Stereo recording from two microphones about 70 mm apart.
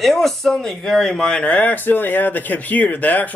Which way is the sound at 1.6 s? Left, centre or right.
Left.